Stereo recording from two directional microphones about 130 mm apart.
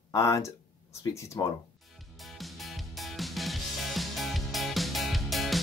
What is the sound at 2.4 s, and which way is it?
Music, centre (ahead or behind).